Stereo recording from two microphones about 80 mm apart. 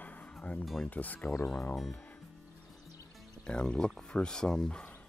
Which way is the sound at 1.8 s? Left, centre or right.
Centre.